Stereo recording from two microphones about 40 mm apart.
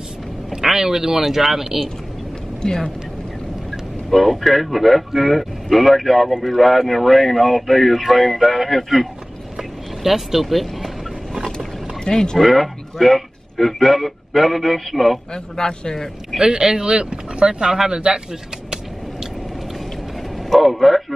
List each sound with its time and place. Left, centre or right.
0.7 s speech: centre
2.6 s speech: centre
4.1 s speech: centre
9.6 s vehicle: centre
12.0 s speech: centre
12.4 s a man's voice: centre
15.3 s speech: centre
16.3 s speech: centre
20.4 s a man's voice: centre